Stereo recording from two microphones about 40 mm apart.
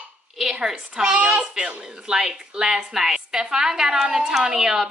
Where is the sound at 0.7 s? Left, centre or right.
Centre.